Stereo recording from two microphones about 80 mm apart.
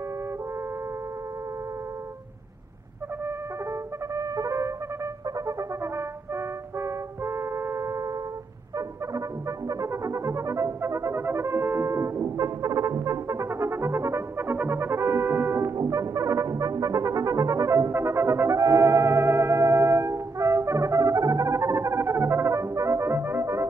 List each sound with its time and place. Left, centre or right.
4.1 s trumpet: right
5.6 s brass instrument: right
9.7 s brass instrument: right